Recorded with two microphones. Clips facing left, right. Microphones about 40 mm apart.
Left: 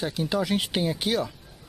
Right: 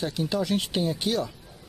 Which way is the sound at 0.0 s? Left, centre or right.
Centre.